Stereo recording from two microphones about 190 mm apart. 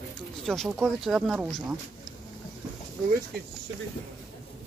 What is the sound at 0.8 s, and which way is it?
Speech, centre (ahead or behind).